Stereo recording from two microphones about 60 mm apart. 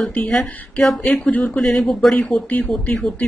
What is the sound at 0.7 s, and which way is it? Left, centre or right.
Speech, centre.